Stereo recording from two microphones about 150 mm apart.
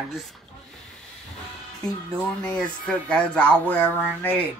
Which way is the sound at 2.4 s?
5° left (ahead or behind).